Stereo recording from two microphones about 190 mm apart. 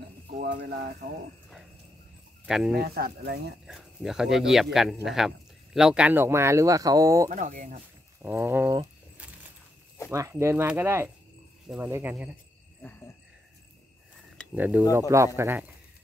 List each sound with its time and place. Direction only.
0.4 s speech: 55° right (ahead or behind)
2.4 s speech: 5° right (ahead or behind)
2.7 s speech: 55° right (ahead or behind)
3.6 s speech: centre (ahead or behind); by 7.2 s 15° right (ahead or behind)
7.2 s speech: 40° right (ahead or behind)
8.2 s speech: 10° right (ahead or behind)
10.1 s speech: 15° right (ahead or behind)
14.5 s speech: 10° right (ahead or behind)